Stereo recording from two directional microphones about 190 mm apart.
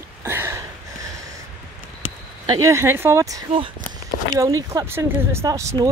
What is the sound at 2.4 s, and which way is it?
Speech, 15° right (ahead or behind).